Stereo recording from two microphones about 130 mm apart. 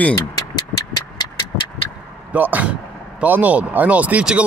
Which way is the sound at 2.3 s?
15° right (ahead or behind).